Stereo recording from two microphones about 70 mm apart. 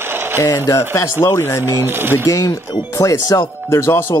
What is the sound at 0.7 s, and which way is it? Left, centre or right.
Speech, left.